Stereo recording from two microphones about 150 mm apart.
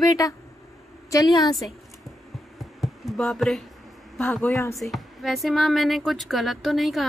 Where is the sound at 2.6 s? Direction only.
Centre (ahead or behind).